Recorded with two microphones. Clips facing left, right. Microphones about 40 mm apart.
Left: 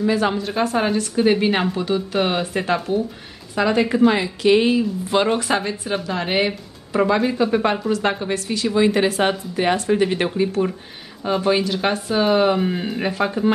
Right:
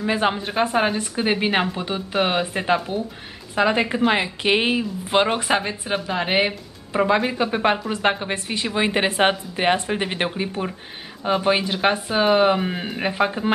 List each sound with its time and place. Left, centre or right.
0.0 s a woman's voice: right